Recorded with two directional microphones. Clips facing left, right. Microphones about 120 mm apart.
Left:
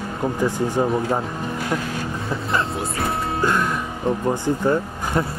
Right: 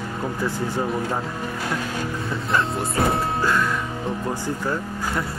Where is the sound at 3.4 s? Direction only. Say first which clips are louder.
Left 1 dB; 20° left (ahead or behind).